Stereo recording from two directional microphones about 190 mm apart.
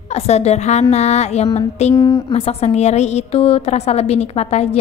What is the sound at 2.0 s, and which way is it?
Speech, 20° left (ahead or behind).